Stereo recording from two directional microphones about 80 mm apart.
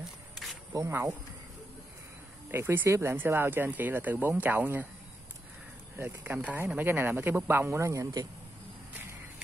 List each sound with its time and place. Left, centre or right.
2.5 s speech: right
5.9 s speech: right